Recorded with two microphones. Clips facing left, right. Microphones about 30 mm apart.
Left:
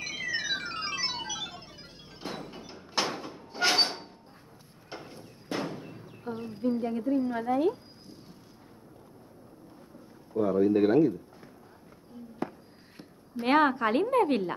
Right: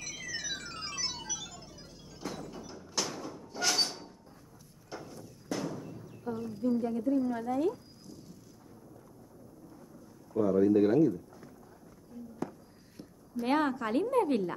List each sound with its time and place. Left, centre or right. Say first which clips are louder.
0.0 s music: left 7 dB; left
2.2 s sliding door: left 1 dB; left
4.8 s a sound: left 1 dB; left
10.4 s a woman's voice: left 1 dB; left
13.4 s a woman's voice: left 6 dB; left